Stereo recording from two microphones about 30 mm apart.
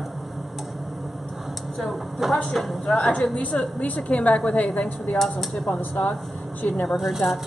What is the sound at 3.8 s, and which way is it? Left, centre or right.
A woman's voice, left.